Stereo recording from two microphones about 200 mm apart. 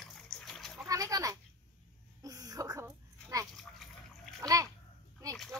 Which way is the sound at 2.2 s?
15° right (ahead or behind).